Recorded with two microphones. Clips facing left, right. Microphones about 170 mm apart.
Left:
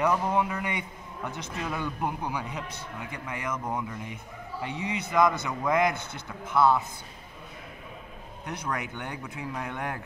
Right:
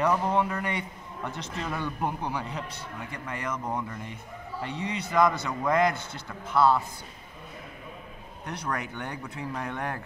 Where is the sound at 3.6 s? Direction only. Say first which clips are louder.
Even; 5° left (ahead or behind); by 5.5 s 20° left (ahead or behind).